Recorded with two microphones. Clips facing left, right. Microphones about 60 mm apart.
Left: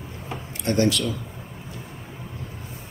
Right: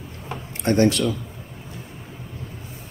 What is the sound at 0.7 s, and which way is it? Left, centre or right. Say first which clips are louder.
Speech: right 3 dB; right.